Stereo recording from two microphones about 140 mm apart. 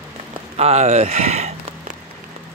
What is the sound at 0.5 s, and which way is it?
Speech, 50° right (ahead or behind).